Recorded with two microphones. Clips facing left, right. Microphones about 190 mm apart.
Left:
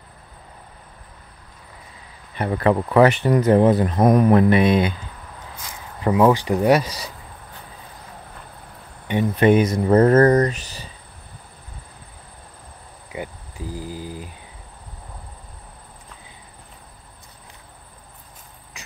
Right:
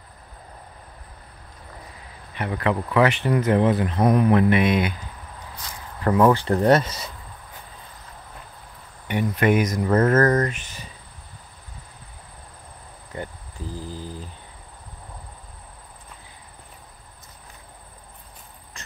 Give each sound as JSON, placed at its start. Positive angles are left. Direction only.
{"t": 2.3, "sound": "speech", "side_deg": 40}
{"t": 6.0, "sound": "speech", "side_deg": 15}
{"t": 9.0, "sound": "speech", "side_deg": 25}
{"t": 13.1, "sound": "insect", "side_deg": 10}